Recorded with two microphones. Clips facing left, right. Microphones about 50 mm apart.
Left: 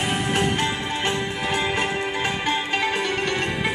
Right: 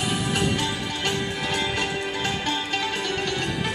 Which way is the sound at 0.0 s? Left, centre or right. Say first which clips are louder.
Left 2 dB; left.